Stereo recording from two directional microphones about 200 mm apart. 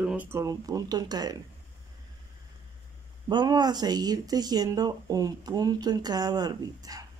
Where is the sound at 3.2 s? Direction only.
20° right (ahead or behind).